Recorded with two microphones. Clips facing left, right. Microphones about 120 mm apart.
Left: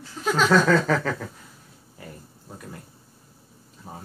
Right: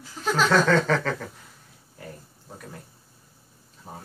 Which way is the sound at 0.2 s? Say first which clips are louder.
Left 1 dB; 5° left (ahead or behind).